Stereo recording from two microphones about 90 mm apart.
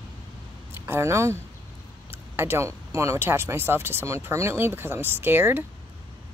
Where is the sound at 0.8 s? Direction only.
30° right (ahead or behind).